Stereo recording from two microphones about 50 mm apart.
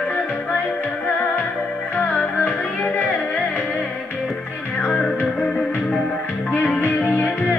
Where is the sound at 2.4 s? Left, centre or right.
Left.